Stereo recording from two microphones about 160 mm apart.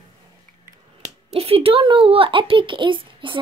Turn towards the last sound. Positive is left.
turn(degrees=-30)  # may be behind; listen again after turning